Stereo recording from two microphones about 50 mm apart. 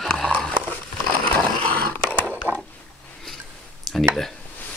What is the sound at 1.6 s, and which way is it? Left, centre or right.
Skateboard, left.